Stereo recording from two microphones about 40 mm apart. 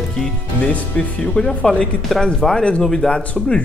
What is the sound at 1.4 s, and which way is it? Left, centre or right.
Speech, left.